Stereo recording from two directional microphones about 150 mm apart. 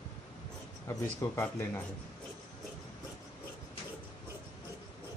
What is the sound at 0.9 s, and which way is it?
Speech, 20° left (ahead or behind).